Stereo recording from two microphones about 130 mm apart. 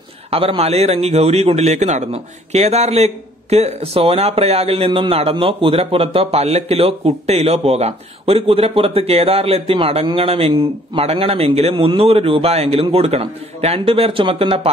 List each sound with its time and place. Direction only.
0.3 s a man's voice: 45° right (ahead or behind)